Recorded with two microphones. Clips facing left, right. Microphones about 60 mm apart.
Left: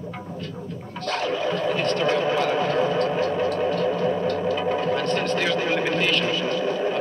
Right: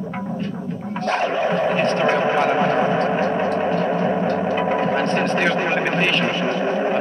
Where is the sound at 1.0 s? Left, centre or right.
Right.